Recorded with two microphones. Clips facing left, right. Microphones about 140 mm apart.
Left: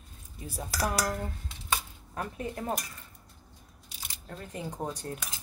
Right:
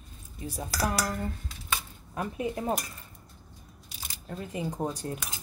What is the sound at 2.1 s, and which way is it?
Speech, 10° right (ahead or behind).